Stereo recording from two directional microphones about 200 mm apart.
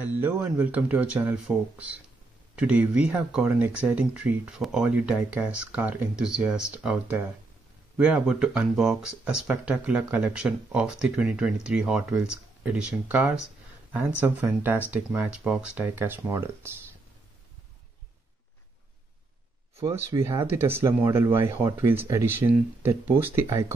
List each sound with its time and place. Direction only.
0.0 s speech: 10° right (ahead or behind)
20.1 s speech: 15° right (ahead or behind)